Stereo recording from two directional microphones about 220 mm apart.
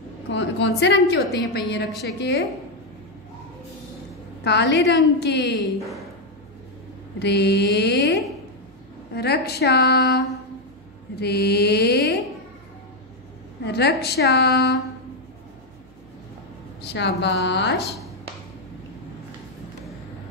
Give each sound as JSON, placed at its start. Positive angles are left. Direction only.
{"t": 0.3, "sound": "a woman's voice", "side_deg": 55}
{"t": 4.5, "sound": "a woman's voice", "side_deg": 50}
{"t": 7.2, "sound": "a woman's voice", "side_deg": 50}
{"t": 13.7, "sound": "a woman's voice", "side_deg": 50}
{"t": 16.8, "sound": "a woman's voice", "side_deg": 50}